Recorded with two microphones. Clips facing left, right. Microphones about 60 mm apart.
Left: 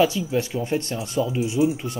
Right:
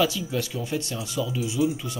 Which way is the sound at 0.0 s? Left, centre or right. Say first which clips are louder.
Left 4 dB; left.